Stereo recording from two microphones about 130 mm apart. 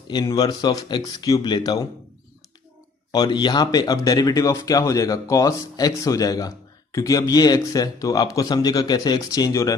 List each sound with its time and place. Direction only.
0.1 s speech: 35° left (ahead or behind)
3.1 s speech: 35° left (ahead or behind)